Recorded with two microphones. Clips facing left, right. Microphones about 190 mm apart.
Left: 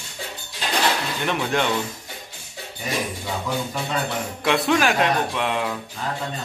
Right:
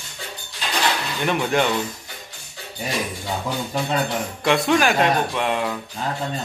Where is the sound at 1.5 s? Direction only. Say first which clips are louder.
Right 3 dB; 5° right (ahead or behind).